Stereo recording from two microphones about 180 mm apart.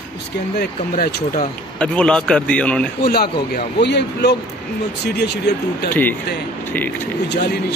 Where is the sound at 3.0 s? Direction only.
60° left (ahead or behind).